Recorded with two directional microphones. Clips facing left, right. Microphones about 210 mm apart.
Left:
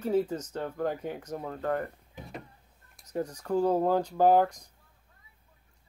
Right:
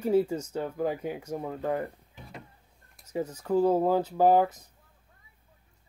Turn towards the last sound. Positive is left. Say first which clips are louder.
# right 1 dB
turn(degrees=-5)  # may be behind; listen again after turning